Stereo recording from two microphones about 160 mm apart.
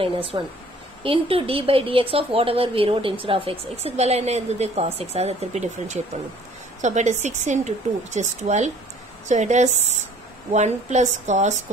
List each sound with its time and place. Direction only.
0.0 s a woman's voice: 35° right (ahead or behind)